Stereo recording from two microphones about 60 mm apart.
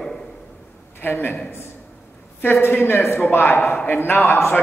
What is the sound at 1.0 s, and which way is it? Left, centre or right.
Speech, left.